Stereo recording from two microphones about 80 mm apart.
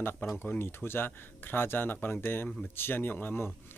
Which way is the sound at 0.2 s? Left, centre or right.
Left.